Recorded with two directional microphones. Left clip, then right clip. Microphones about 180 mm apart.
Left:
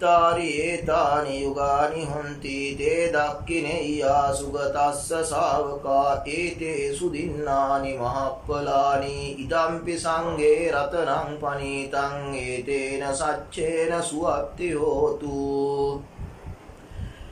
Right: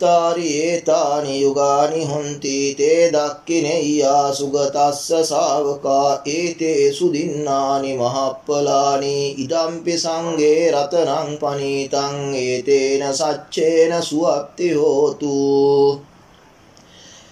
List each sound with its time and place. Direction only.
0.0 s mantra: 35° right (ahead or behind)